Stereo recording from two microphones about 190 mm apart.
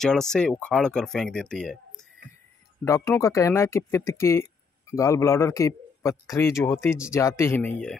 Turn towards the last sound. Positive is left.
turn(degrees=5)  # may be behind; listen again after turning